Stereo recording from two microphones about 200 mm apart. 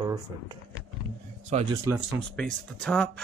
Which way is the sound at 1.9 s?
Centre (ahead or behind).